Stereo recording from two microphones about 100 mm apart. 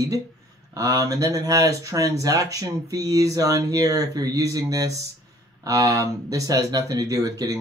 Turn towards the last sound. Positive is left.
turn(degrees=-35)  # may be behind; listen again after turning